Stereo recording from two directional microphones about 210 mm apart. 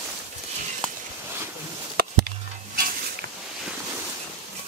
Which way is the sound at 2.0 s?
45° right (ahead or behind).